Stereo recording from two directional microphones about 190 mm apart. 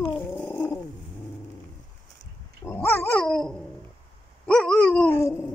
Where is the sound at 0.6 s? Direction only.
15° left (ahead or behind).